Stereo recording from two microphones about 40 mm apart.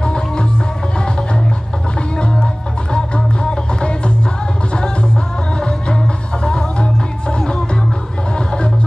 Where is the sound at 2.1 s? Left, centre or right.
Left.